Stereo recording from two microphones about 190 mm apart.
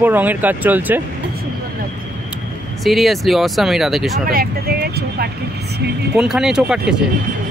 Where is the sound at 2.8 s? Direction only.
Centre (ahead or behind).